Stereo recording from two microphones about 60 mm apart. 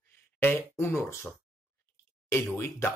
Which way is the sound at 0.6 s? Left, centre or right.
Left.